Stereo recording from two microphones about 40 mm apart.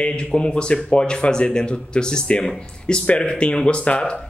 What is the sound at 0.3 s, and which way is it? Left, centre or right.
Speech, left.